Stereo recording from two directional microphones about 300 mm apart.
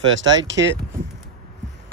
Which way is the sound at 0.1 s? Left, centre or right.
Right.